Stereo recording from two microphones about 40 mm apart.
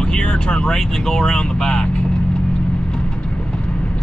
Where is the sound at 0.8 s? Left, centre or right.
Centre.